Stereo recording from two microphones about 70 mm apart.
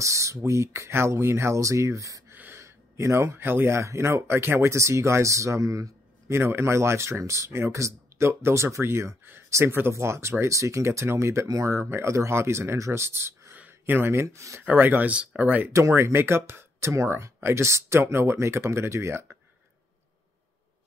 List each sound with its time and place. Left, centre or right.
0.0 s speech: right
2.3 s a sound: right
2.6 s speech: right
6.3 s speech: right
13.6 s a sound: right
14.2 s speech: right
14.6 s speech: right
15.7 s speech: right